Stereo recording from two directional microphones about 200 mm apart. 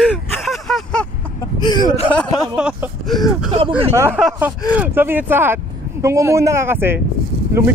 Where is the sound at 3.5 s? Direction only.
25° right (ahead or behind).